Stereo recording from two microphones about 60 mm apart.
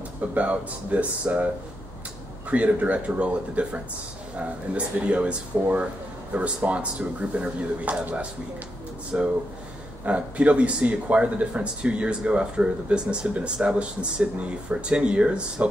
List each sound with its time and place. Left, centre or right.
0.3 s speech: right
2.5 s speech: right